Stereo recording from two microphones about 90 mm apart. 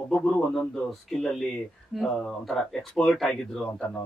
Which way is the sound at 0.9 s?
5° left (ahead or behind).